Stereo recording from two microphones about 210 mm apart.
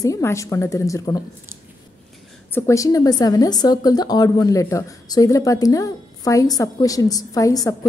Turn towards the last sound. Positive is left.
turn(degrees=15)  # may be behind; listen again after turning